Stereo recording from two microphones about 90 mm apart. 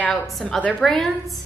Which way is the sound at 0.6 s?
15° left (ahead or behind).